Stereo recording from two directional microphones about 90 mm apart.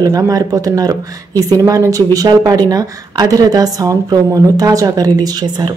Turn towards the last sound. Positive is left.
turn(degrees=-50)  # may be behind; listen again after turning